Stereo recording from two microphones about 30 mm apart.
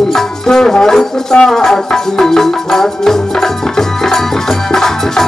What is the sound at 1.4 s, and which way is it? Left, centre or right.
Music, centre.